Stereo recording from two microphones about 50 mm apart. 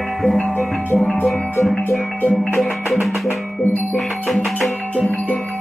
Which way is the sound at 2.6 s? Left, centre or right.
Centre.